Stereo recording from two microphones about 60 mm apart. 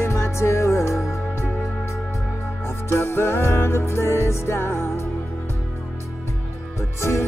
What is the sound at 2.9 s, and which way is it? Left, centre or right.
Music, left.